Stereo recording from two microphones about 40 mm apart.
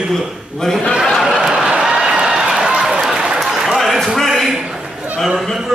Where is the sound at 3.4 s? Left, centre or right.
Centre.